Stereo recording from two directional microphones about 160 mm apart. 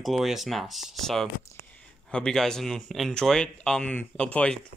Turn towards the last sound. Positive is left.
turn(degrees=5)  # may be behind; listen again after turning